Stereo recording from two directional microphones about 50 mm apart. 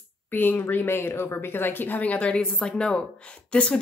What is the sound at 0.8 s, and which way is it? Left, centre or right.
A woman's voice, left.